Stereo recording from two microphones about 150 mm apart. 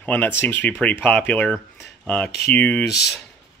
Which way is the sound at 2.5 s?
10° left (ahead or behind).